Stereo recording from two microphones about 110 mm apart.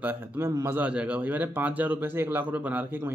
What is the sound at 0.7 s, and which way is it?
Speech, 10° right (ahead or behind).